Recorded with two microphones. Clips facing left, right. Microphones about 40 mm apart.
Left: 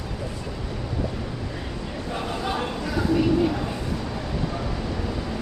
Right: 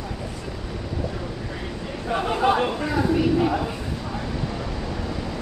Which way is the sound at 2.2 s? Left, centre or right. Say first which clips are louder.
Right 8 dB; right.